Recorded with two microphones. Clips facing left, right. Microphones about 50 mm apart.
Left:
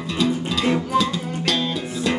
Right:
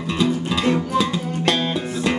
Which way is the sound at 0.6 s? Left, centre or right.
Centre.